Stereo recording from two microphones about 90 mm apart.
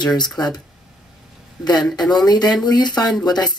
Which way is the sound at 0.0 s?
50° left (ahead or behind).